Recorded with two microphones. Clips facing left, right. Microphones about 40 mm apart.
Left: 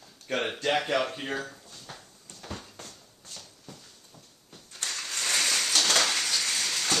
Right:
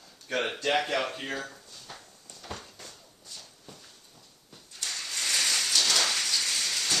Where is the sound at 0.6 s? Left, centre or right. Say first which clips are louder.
Left 1 dB; centre.